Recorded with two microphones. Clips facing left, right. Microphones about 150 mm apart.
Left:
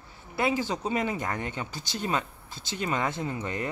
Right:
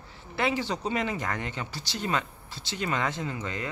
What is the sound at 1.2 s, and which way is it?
Speech, 20° left (ahead or behind).